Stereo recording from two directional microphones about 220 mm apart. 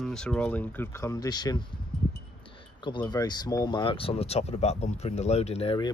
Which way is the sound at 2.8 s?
20° left (ahead or behind).